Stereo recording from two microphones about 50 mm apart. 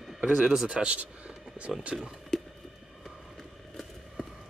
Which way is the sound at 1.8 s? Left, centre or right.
Centre.